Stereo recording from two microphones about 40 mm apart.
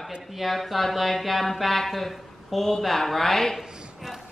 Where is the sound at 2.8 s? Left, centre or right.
Centre.